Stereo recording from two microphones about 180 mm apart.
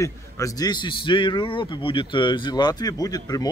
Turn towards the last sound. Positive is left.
turn(degrees=20)  # may be behind; listen again after turning